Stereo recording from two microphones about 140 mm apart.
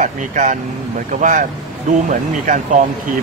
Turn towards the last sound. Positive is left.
turn(degrees=-70)  # may be behind; listen again after turning